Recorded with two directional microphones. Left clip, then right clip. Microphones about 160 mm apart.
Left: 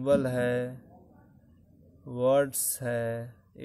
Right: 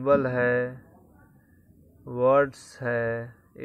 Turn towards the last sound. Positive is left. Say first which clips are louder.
# right 4 dB
turn(degrees=15)  # may be behind; listen again after turning